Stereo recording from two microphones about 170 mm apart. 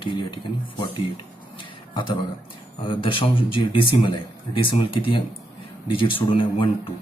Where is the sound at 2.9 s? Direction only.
30° left (ahead or behind).